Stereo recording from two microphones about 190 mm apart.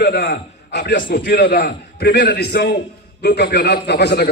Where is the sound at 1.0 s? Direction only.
45° left (ahead or behind).